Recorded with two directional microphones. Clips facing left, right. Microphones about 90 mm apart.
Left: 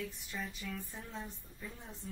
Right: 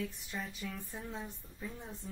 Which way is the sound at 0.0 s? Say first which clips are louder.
Right 2 dB; 5° right (ahead or behind).